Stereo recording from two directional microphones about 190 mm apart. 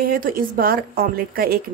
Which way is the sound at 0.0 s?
50° right (ahead or behind).